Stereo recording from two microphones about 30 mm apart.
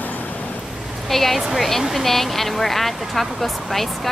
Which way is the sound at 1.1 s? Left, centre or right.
Centre.